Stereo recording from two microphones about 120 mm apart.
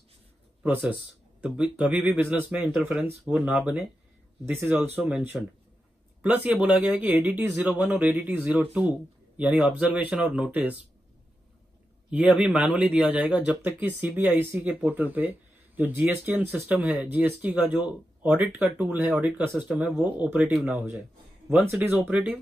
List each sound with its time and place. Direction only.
0.7 s speech: 15° right (ahead or behind)
4.5 s speech: 15° right (ahead or behind)
4.9 s speech: 5° right (ahead or behind)
6.2 s speech: 10° right (ahead or behind)
12.1 s speech: 10° right (ahead or behind)